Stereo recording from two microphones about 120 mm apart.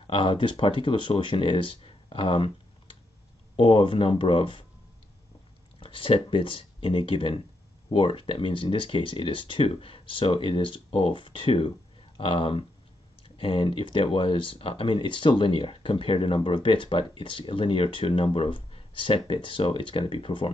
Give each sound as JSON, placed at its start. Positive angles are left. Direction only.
{"t": 0.0, "sound": "speech", "side_deg": 45}
{"t": 3.5, "sound": "speech", "side_deg": 45}
{"t": 5.8, "sound": "speech", "side_deg": 45}